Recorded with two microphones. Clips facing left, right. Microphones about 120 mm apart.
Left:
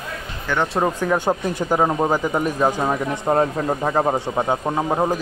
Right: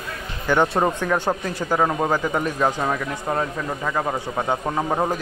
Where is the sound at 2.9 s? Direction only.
30° left (ahead or behind).